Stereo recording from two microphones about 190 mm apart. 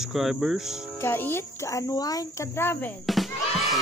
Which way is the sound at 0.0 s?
Centre (ahead or behind).